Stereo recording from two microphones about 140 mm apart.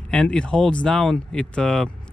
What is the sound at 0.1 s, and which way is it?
Speech, 5° left (ahead or behind).